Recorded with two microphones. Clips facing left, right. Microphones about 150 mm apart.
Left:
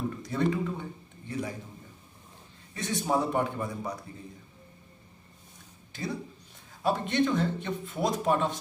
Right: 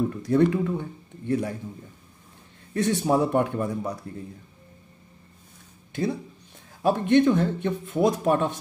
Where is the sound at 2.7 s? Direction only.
60° right (ahead or behind).